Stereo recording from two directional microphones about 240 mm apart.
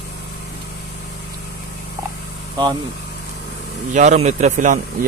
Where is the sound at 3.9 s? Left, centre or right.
Right.